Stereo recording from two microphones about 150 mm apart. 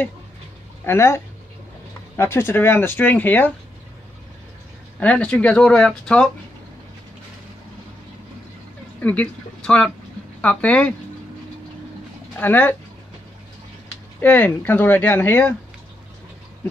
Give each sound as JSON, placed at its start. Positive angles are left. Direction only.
{"t": 0.8, "sound": "speech", "side_deg": 20}
{"t": 5.0, "sound": "speech", "side_deg": 5}
{"t": 9.0, "sound": "speech", "side_deg": 10}
{"t": 12.4, "sound": "speech", "side_deg": 10}
{"t": 14.2, "sound": "speech", "side_deg": 10}